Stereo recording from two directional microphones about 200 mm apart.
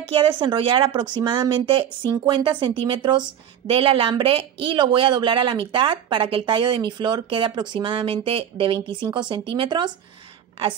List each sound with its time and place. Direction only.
0.4 s a woman's voice: 25° right (ahead or behind)